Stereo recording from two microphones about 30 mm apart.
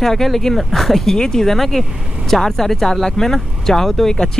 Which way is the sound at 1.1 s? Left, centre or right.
Left.